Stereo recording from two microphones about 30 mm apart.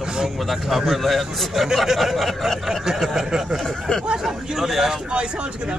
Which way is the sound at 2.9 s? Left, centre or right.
Centre.